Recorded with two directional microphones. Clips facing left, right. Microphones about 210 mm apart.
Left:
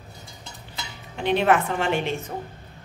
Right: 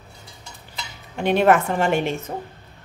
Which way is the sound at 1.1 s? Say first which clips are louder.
Right 3 dB; 45° right (ahead or behind).